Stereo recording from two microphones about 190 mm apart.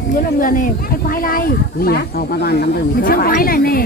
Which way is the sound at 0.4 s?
45° left (ahead or behind).